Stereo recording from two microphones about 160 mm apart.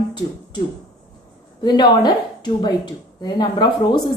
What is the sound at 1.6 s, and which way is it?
A woman's voice, 25° left (ahead or behind).